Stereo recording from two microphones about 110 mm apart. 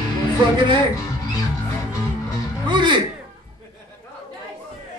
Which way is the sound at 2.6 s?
45° right (ahead or behind).